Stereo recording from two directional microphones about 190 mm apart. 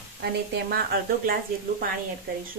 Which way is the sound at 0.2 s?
55° right (ahead or behind).